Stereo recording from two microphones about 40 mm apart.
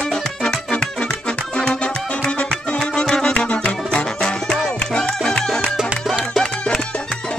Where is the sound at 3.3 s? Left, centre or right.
Left.